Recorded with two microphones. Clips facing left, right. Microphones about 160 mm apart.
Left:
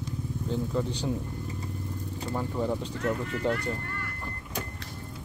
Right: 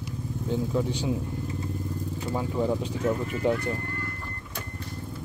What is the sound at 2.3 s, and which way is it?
Speech, 10° right (ahead or behind).